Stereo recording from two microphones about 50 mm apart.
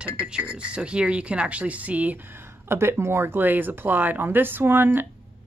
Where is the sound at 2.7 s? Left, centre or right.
Right.